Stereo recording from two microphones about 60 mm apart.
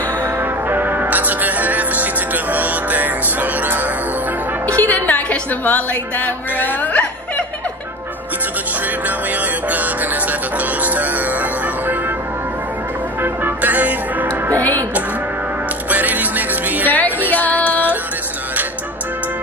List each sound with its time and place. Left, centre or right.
0.4 s music: right
4.6 s music: left
8.8 s music: right
13.2 s music: right
14.5 s music: left
15.9 s music: right
16.8 s music: left